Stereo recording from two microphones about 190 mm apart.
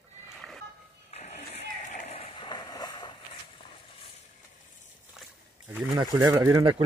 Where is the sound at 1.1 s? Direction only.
35° left (ahead or behind).